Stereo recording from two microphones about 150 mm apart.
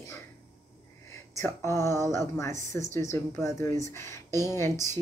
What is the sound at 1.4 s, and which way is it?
Speech, 15° left (ahead or behind).